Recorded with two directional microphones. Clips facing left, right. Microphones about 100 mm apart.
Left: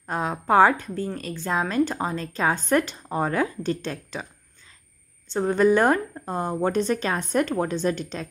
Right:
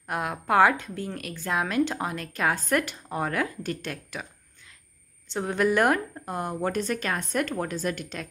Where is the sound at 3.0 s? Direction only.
10° left (ahead or behind).